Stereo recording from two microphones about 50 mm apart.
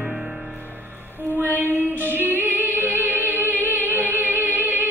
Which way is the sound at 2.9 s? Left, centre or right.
Right.